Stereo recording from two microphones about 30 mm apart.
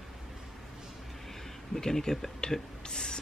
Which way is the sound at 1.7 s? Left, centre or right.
Centre.